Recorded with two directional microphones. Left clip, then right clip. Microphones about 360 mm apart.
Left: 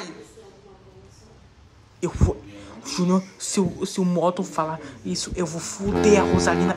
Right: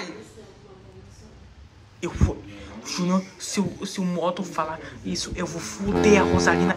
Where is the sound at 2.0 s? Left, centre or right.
Centre.